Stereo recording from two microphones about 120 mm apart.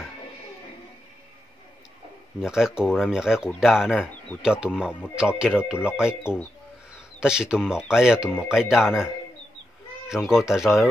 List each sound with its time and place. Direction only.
2.4 s speech: 5° right (ahead or behind)
6.2 s speech: 20° left (ahead or behind)
7.2 s speech: 5° right (ahead or behind)